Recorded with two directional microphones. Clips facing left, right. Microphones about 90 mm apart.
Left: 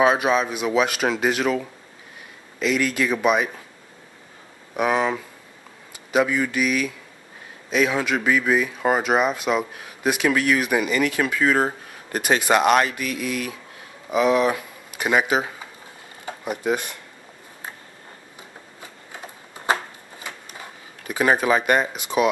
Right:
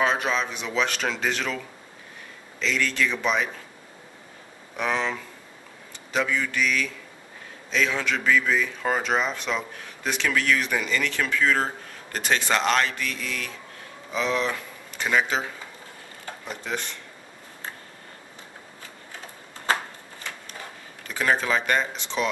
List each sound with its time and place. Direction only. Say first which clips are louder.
0.0 s speech: left 6 dB; 10° left (ahead or behind)
2.6 s speech: left 4 dB; 10° left (ahead or behind)
4.7 s speech: left 6 dB; 15° left (ahead or behind)
18.8 s shuffling cards: left 4 dB; 15° left (ahead or behind)
20.2 s a sound: left 1 dB; 10° left (ahead or behind)
21.1 s speech: left 5 dB; 15° left (ahead or behind)